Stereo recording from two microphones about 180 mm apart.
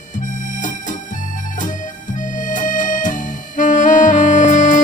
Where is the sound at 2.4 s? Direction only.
45° left (ahead or behind).